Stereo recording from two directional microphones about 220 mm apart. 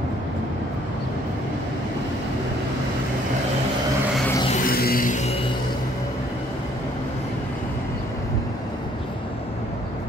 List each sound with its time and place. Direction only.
4.6 s music: 40° left (ahead or behind)